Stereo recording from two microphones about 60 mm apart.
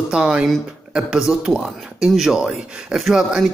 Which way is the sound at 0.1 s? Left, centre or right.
Centre.